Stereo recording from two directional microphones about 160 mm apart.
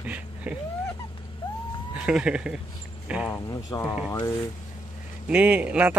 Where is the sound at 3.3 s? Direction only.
20° left (ahead or behind).